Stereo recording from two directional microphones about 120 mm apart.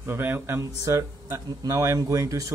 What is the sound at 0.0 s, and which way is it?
Speech, 15° right (ahead or behind).